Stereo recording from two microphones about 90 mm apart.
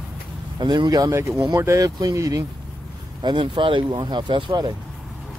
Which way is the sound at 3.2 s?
65° right (ahead or behind).